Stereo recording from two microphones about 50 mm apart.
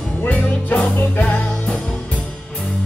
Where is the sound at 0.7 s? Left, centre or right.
Left.